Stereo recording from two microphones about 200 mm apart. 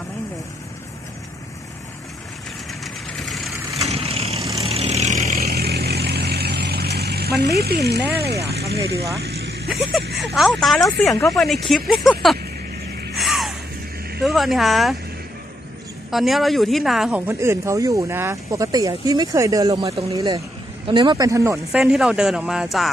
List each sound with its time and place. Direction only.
2.8 s vehicle: centre (ahead or behind)
3.9 s vehicle: 30° right (ahead or behind)
5.5 s vehicle: 55° right (ahead or behind)
9.7 s speech: centre (ahead or behind)
13.1 s a sound: centre (ahead or behind)
14.2 s speech: centre (ahead or behind)
16.1 s speech: centre (ahead or behind)
17.3 s speech: 15° right (ahead or behind)
21.8 s speech: 5° right (ahead or behind)